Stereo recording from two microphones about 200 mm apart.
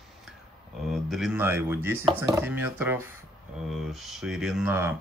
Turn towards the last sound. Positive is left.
turn(degrees=-10)  # may be behind; listen again after turning